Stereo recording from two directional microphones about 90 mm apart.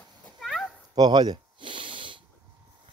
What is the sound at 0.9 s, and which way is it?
Snort, 55° right (ahead or behind).